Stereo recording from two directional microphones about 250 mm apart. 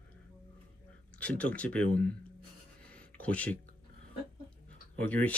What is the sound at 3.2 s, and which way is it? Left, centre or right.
Speech, centre.